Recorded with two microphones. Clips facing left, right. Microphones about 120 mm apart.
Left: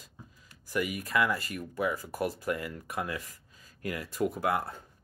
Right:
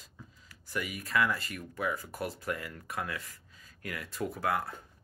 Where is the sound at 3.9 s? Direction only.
35° left (ahead or behind).